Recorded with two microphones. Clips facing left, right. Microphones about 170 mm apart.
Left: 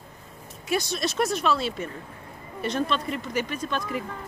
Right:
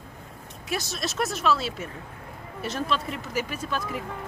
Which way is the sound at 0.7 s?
Centre (ahead or behind).